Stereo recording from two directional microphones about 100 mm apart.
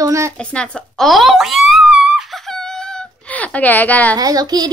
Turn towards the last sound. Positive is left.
turn(degrees=-40)  # may be behind; listen again after turning